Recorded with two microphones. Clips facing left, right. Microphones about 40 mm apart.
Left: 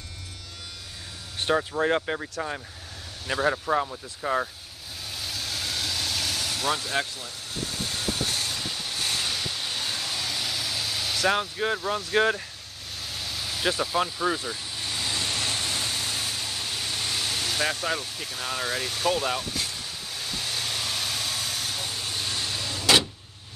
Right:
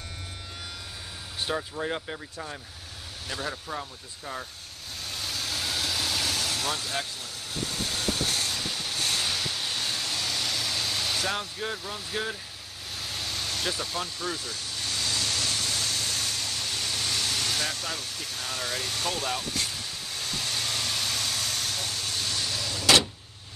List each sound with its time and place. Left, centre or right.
1.5 s speech: left
3.4 s speech: left
5.1 s vehicle: centre
7.6 s vehicle: centre
11.2 s speech: centre
13.0 s vehicle: centre
13.7 s vehicle: centre